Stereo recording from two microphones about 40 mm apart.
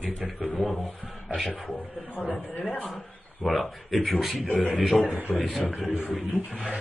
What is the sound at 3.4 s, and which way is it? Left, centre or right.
Speech, centre.